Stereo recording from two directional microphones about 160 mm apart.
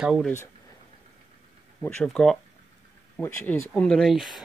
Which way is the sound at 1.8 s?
5° left (ahead or behind).